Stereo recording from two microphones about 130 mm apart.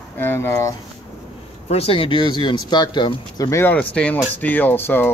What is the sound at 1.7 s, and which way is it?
Speech, 50° left (ahead or behind).